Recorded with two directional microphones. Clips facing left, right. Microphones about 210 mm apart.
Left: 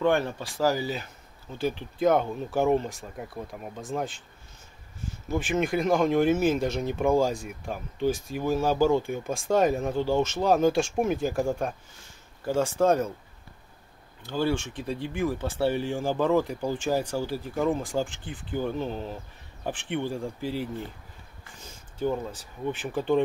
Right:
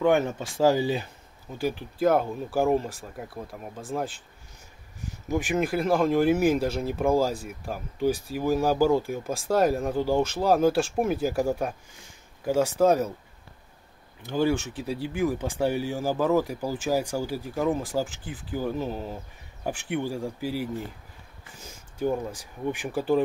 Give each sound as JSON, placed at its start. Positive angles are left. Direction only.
{"t": 0.0, "sound": "speech", "side_deg": -15}
{"t": 1.5, "sound": "speech", "side_deg": -10}
{"t": 5.3, "sound": "speech", "side_deg": -10}
{"t": 14.2, "sound": "speech", "side_deg": -15}